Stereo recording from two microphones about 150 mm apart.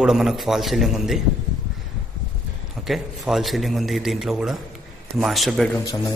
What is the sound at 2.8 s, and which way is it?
A man's voice, centre (ahead or behind).